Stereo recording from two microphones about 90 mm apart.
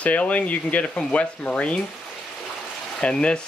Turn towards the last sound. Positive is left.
turn(degrees=10)  # may be behind; listen again after turning